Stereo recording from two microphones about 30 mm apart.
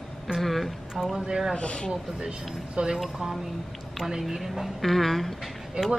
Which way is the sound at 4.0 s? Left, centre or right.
Centre.